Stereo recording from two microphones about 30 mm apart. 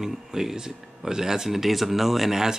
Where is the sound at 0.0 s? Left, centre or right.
Centre.